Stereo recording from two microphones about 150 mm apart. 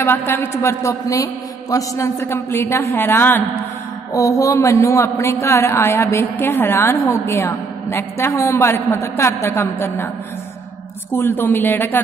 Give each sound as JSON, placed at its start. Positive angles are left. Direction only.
{"t": 0.0, "sound": "a man's voice", "side_deg": 15}
{"t": 11.1, "sound": "a man's voice", "side_deg": 15}